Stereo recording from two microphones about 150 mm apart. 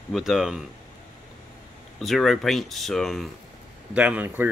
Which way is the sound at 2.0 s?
Centre (ahead or behind).